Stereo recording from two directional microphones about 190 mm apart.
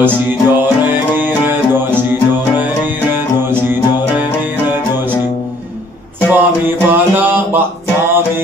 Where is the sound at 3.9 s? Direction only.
20° left (ahead or behind).